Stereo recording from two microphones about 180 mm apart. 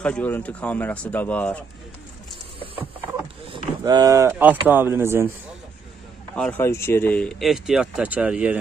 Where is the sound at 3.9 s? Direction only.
20° right (ahead or behind).